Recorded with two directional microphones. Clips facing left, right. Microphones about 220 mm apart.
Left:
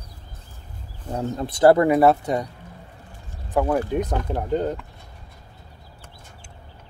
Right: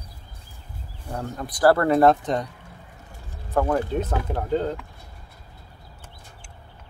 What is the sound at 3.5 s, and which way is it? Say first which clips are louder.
Speech: left 1 dB; 15° left (ahead or behind).